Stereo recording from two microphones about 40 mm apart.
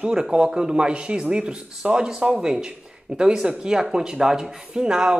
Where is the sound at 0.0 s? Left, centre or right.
Centre.